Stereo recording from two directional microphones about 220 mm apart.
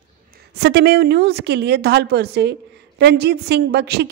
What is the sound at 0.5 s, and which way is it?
A woman's voice, 50° right (ahead or behind).